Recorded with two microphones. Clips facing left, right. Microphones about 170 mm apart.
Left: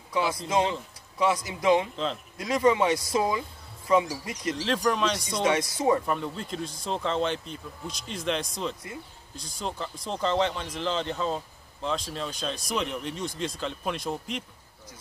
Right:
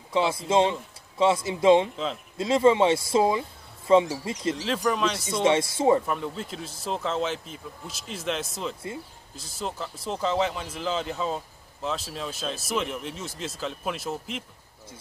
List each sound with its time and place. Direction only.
0.1 s speech: 25° right (ahead or behind)
4.6 s speech: 5° right (ahead or behind)
5.4 s speech: 25° right (ahead or behind)
6.0 s speech: centre (ahead or behind)